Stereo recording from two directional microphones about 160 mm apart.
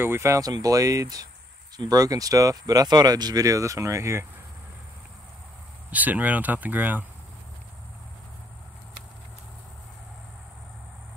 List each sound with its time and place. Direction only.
0.0 s speech: 15° right (ahead or behind)
5.9 s speech: 10° right (ahead or behind)